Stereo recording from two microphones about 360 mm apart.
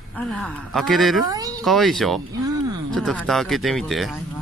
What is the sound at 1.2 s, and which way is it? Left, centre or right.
Speech, centre.